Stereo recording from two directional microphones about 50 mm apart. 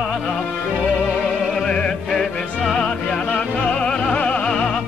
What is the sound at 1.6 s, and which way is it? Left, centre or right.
Music, centre.